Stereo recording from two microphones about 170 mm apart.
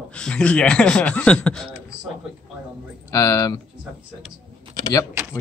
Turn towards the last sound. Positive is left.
turn(degrees=20)  # may be behind; listen again after turning